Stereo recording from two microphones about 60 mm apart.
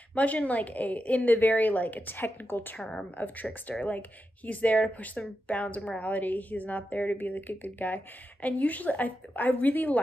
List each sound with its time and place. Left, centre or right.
0.1 s speech: left
2.8 s speech: centre
3.2 s speech: left